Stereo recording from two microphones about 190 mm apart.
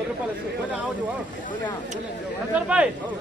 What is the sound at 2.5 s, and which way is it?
Speech, 5° right (ahead or behind).